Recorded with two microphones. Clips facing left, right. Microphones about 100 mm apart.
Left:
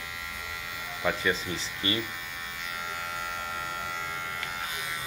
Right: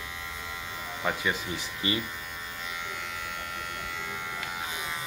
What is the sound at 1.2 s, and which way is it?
Speech, 15° right (ahead or behind).